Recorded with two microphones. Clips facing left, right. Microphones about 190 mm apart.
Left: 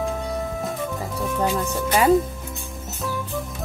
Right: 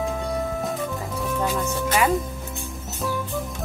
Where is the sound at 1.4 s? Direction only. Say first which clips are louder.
Left 2 dB; 15° left (ahead or behind).